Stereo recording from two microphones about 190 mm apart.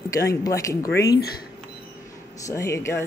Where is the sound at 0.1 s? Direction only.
15° left (ahead or behind).